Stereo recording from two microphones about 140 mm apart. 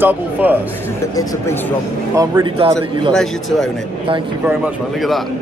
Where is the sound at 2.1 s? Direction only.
20° right (ahead or behind).